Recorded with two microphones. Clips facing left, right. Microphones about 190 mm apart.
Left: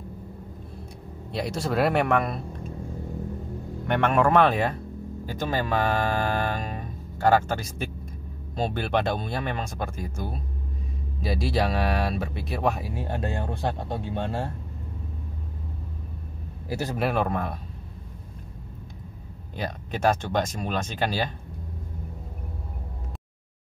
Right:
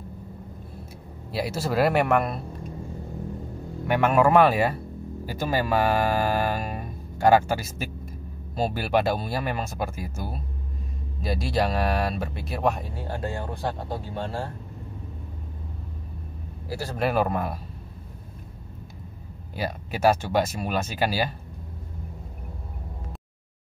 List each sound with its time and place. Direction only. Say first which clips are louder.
1.3 s speech: right 1 dB; 5° right (ahead or behind)
3.8 s speech: right 2 dB; 5° right (ahead or behind)
12.9 s speech: left 1 dB; 20° left (ahead or behind)
16.6 s speech: left 3 dB; 20° left (ahead or behind)
16.9 s speech: right 2 dB; centre (ahead or behind)
19.5 s speech: right 1 dB; 5° right (ahead or behind)